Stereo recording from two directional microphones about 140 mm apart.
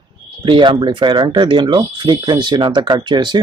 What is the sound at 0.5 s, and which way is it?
Speech, 35° right (ahead or behind).